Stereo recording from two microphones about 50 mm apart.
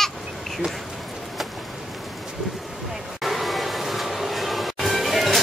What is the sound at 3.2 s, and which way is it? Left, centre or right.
Train, centre.